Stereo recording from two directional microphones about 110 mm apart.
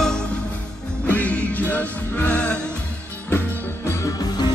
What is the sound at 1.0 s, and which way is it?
Music, 15° left (ahead or behind).